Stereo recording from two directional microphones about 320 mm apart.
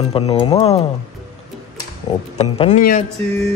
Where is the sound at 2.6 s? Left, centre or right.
Left.